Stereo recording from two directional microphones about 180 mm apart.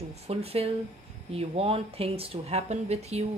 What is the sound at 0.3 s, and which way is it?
A woman's voice, 35° right (ahead or behind).